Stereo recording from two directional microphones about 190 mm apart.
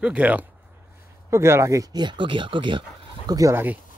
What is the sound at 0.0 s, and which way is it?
Speech, 5° right (ahead or behind).